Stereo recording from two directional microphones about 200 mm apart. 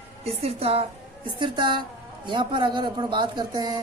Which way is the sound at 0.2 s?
30° right (ahead or behind).